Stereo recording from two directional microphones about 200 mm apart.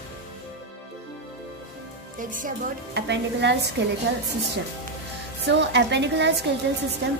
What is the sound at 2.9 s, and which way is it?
Speech, 60° right (ahead or behind).